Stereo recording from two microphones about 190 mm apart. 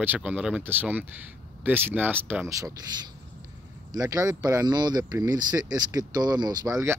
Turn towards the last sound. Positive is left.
turn(degrees=-15)  # may be behind; listen again after turning